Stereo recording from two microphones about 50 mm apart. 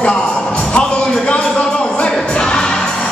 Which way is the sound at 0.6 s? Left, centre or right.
Left.